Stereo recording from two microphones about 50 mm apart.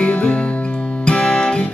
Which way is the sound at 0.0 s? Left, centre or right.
Left.